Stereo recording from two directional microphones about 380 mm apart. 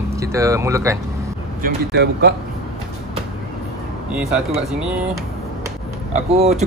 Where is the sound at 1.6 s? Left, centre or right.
Right.